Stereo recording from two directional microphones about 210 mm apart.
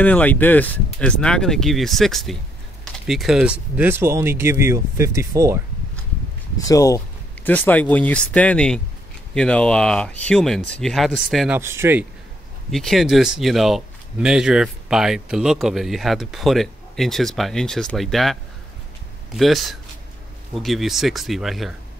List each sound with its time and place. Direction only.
0.0 s speech: 10° left (ahead or behind); by 5.6 s 15° right (ahead or behind)
6.6 s speech: 15° left (ahead or behind); by 12.1 s 10° right (ahead or behind)
12.7 s speech: centre (ahead or behind)